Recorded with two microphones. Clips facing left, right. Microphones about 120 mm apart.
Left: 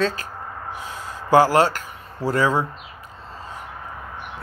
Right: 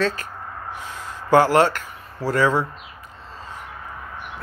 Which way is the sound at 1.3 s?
35° left (ahead or behind).